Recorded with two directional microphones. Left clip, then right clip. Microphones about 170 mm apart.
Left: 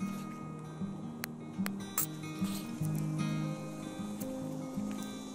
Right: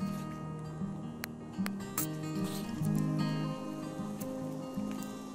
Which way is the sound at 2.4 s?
Centre (ahead or behind).